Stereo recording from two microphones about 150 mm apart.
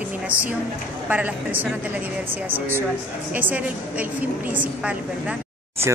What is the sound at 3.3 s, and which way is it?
A woman's voice, 10° right (ahead or behind).